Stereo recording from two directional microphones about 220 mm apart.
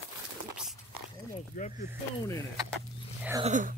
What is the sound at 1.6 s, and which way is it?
Speech, 40° left (ahead or behind).